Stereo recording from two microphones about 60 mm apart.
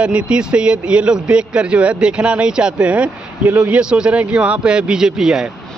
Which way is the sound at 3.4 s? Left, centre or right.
Right.